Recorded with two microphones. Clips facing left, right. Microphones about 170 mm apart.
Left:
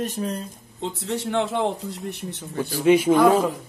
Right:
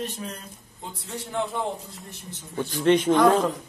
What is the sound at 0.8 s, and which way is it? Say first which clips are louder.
A man's voice: left 9 dB; 80° left.